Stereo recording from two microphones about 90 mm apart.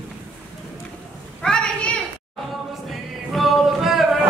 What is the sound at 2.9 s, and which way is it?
Choir, centre (ahead or behind).